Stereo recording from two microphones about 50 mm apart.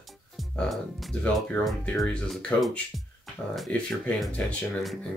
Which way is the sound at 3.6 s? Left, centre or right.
Left.